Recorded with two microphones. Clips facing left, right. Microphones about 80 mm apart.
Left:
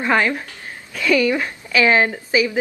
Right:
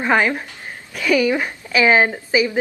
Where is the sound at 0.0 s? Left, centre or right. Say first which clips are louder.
Right 1 dB; centre.